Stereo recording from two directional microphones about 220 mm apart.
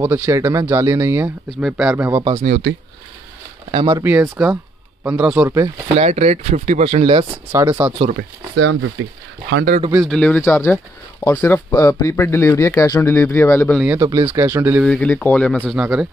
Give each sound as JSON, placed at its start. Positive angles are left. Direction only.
{"t": 0.0, "sound": "speech", "side_deg": -10}
{"t": 2.3, "sound": "speech", "side_deg": -30}
{"t": 3.7, "sound": "speech", "side_deg": -25}
{"t": 4.0, "sound": "speech", "side_deg": -5}
{"t": 5.9, "sound": "speech", "side_deg": -30}
{"t": 8.0, "sound": "speech", "side_deg": -35}
{"t": 8.5, "sound": "speech", "side_deg": -65}
{"t": 10.0, "sound": "speech", "side_deg": 5}
{"t": 13.9, "sound": "speech", "side_deg": -15}
{"t": 14.9, "sound": "speech", "side_deg": 5}
{"t": 15.6, "sound": "speech", "side_deg": -5}